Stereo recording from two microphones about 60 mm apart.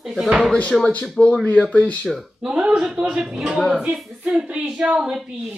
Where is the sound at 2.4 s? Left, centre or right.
Centre.